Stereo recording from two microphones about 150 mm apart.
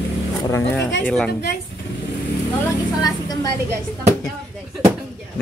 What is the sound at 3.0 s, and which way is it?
Speech, 25° left (ahead or behind).